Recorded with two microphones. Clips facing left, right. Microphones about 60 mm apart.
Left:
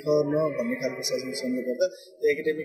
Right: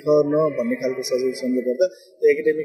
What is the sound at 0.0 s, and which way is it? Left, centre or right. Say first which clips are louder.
A man's voice: right 6 dB; right.